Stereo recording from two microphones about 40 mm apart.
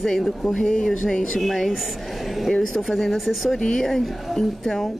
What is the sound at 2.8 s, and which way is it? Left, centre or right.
Speech, centre.